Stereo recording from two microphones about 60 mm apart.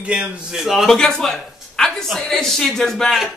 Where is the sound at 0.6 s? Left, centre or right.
Centre.